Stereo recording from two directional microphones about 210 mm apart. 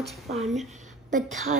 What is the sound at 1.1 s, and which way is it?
Speech, 40° right (ahead or behind).